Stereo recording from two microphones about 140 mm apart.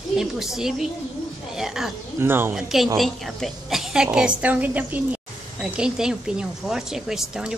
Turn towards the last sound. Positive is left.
turn(degrees=-5)  # may be behind; listen again after turning